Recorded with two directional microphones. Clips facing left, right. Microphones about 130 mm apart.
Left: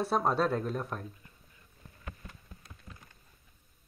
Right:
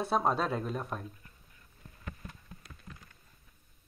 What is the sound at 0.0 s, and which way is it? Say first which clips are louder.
Speech: left 1 dB; centre (ahead or behind).